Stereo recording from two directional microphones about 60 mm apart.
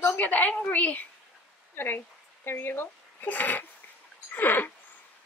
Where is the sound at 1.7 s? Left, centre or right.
Left.